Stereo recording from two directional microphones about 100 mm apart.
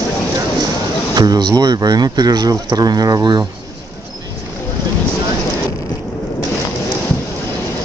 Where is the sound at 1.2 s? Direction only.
45° right (ahead or behind).